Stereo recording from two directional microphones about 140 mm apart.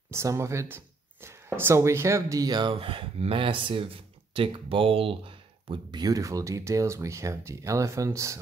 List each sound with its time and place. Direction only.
0.1 s speech: 20° right (ahead or behind)
2.7 s speech: 40° right (ahead or behind); by 8.4 s 20° right (ahead or behind)